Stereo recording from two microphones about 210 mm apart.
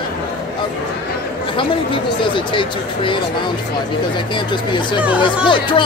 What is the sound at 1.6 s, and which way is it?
Speech, 25° left (ahead or behind).